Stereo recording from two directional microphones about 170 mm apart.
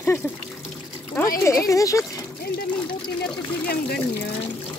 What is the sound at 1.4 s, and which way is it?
Speech, 20° left (ahead or behind).